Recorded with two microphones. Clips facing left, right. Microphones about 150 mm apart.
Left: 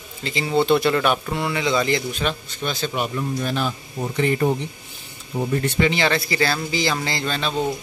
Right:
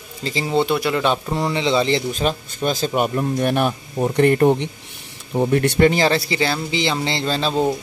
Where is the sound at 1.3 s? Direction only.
30° right (ahead or behind); by 5.9 s 60° right (ahead or behind).